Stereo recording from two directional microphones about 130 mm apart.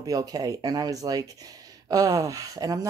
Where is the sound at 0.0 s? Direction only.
30° right (ahead or behind).